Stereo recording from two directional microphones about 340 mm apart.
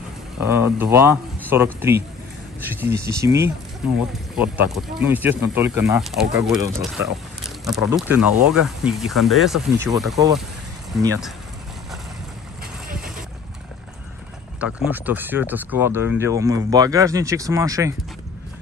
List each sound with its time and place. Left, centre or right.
0.4 s speech: centre
7.4 s a sound: centre
8.2 s speech: centre
12.8 s vehicle: right
14.6 s speech: centre